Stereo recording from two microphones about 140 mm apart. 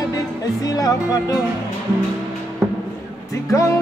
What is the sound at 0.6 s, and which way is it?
Music, 25° left (ahead or behind).